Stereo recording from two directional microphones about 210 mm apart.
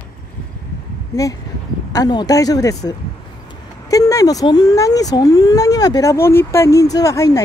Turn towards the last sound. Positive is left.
turn(degrees=15)  # may be behind; listen again after turning